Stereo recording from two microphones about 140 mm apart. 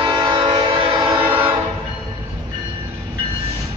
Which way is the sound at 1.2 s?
15° right (ahead or behind).